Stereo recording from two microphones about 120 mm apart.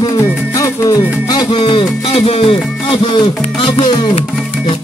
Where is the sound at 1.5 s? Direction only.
45° left (ahead or behind).